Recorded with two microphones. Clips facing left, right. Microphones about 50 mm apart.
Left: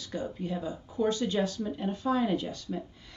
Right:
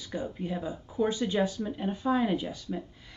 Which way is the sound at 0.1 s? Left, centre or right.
Centre.